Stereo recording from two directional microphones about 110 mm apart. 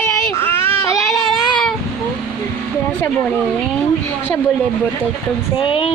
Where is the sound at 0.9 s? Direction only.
Centre (ahead or behind).